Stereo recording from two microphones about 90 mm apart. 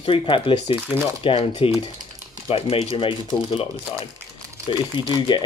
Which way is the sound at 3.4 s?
70° left (ahead or behind).